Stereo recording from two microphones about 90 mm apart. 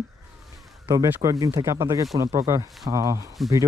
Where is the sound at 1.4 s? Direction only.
35° right (ahead or behind).